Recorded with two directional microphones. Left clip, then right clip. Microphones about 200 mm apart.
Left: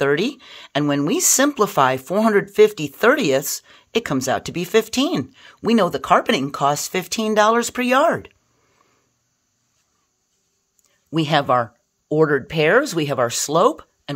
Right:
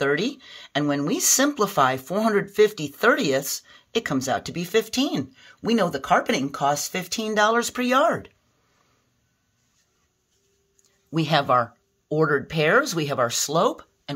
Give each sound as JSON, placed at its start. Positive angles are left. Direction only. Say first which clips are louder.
{"t": 0.0, "sound": "speech", "louder": "left 4 dB", "side_deg": 40}
{"t": 11.1, "sound": "speech", "louder": "left 3 dB", "side_deg": 35}